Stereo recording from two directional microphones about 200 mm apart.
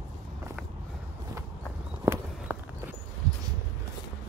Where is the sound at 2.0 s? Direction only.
15° right (ahead or behind).